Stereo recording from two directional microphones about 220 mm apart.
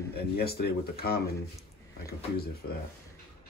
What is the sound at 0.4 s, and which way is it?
Speech, 45° left (ahead or behind).